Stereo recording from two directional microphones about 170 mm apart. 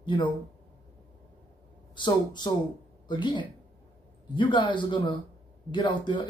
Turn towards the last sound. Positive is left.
turn(degrees=30)  # may be behind; listen again after turning